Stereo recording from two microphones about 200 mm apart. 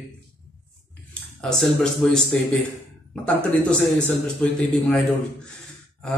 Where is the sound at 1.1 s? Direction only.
5° left (ahead or behind).